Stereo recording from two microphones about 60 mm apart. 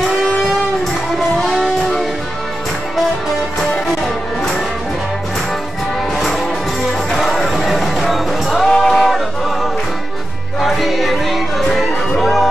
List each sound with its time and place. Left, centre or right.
1.4 s music: centre
7.1 s music: centre